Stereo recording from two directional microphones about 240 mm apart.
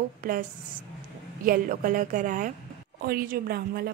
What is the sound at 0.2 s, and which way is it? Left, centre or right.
A woman's voice, right.